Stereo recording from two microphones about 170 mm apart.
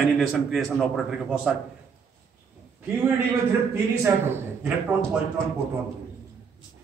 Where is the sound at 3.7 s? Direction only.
15° right (ahead or behind).